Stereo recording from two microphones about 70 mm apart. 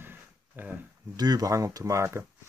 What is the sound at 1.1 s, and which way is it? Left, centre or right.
Speech, right.